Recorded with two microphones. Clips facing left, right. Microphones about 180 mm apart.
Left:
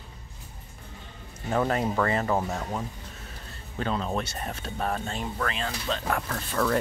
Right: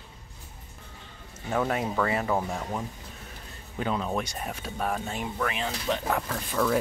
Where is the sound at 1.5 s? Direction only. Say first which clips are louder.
Left 2 dB; centre (ahead or behind).